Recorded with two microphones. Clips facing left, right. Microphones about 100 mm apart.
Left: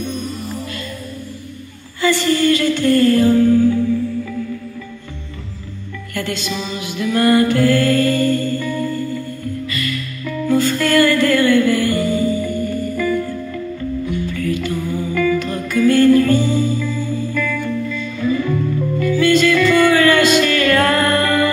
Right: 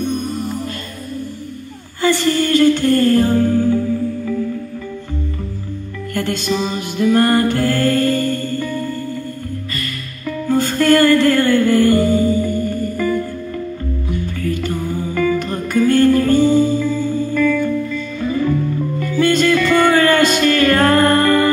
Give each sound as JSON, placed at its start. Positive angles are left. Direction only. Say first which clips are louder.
{"t": 0.0, "sound": "music", "louder": "right 4 dB", "side_deg": -45}
{"t": 2.0, "sound": "music", "louder": "even", "side_deg": -45}
{"t": 6.1, "sound": "music", "louder": "right 4 dB", "side_deg": -45}
{"t": 14.3, "sound": "music", "louder": "left 1 dB", "side_deg": -40}